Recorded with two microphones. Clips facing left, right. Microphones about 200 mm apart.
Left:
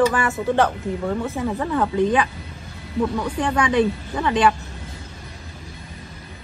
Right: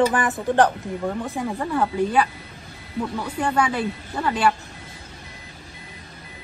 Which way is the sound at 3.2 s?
10° right (ahead or behind).